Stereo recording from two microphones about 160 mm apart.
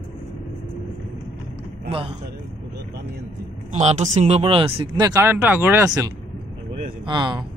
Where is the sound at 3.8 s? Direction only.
45° right (ahead or behind); by 7.4 s 30° right (ahead or behind).